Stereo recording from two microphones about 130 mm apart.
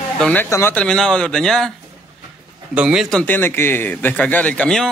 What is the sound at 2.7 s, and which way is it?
Speech, 5° right (ahead or behind).